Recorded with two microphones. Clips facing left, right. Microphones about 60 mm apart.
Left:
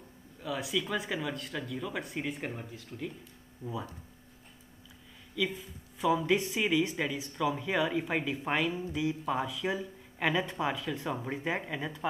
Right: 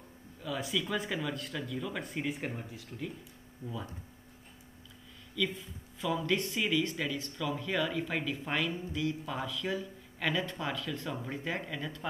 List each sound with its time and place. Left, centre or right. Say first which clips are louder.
0.4 s speech: left 1 dB; centre
3.6 s speech: left 3 dB; centre
5.5 s speech: left 1 dB; centre